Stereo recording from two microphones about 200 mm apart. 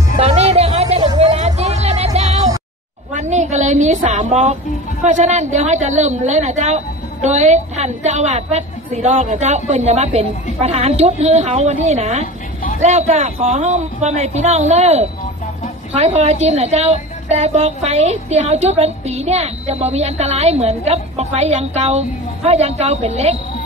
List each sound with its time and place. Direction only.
0.2 s music: 30° right (ahead or behind)
3.1 s a sound: 35° right (ahead or behind)
5.0 s a woman's voice: 35° right (ahead or behind)